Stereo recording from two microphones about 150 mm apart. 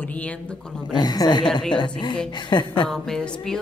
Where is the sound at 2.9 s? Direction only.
5° left (ahead or behind).